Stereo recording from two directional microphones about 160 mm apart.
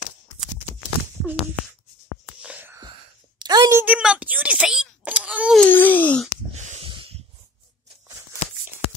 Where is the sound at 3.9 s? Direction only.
5° right (ahead or behind).